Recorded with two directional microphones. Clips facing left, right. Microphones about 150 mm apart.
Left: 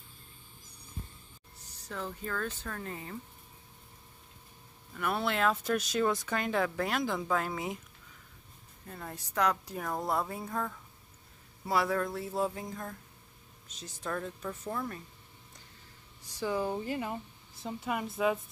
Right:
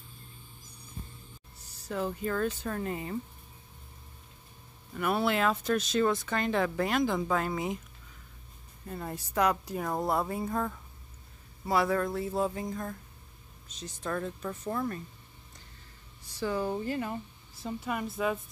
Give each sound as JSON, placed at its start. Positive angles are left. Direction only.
{"t": 1.9, "sound": "speech", "side_deg": -15}
{"t": 4.9, "sound": "speech", "side_deg": -5}
{"t": 5.6, "sound": "speech", "side_deg": 10}
{"t": 8.8, "sound": "speech", "side_deg": -10}
{"t": 11.6, "sound": "speech", "side_deg": 0}
{"t": 16.3, "sound": "speech", "side_deg": 15}